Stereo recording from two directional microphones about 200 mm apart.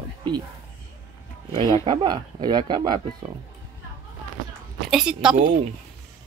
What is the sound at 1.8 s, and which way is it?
Speech, 20° right (ahead or behind).